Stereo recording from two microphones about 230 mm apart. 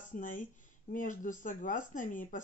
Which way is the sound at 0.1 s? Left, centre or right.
Left.